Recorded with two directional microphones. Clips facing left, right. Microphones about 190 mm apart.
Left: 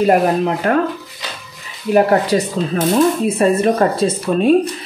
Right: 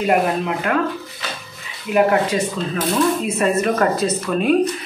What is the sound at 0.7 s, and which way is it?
Speech, 40° left (ahead or behind).